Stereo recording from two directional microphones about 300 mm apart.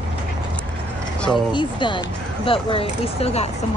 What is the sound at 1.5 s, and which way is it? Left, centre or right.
Speech, centre.